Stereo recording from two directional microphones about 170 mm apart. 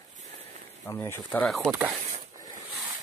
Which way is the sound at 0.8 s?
15° left (ahead or behind).